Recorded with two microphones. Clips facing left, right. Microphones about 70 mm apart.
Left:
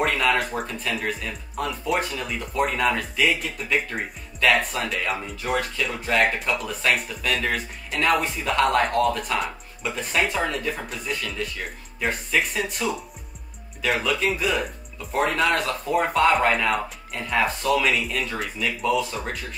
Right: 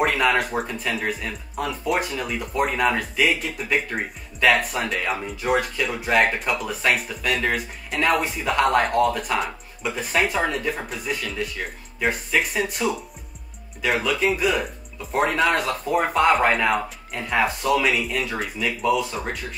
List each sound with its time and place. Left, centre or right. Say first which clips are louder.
0.0 s speech: right 2 dB; centre